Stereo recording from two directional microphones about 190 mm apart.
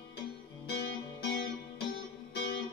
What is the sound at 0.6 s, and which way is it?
Music, 60° left (ahead or behind).